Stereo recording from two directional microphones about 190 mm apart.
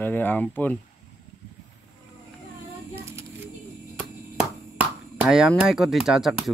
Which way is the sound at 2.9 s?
15° right (ahead or behind).